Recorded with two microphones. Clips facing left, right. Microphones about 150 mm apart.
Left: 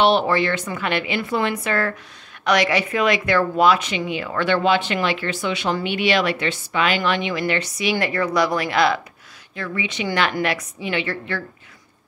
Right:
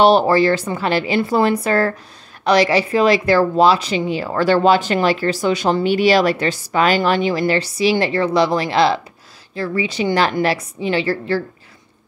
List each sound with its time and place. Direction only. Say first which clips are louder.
0.0 s speech: right 5 dB; 40° right (ahead or behind)